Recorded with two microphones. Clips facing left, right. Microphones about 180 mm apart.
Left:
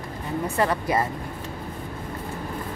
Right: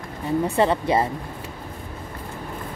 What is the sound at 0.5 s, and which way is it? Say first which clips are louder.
Speech: right 2 dB; 25° right (ahead or behind).